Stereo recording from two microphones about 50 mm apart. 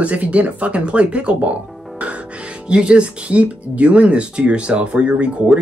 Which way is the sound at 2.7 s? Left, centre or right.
Centre.